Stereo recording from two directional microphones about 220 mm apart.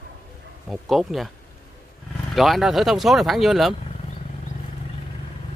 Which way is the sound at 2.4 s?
Centre (ahead or behind).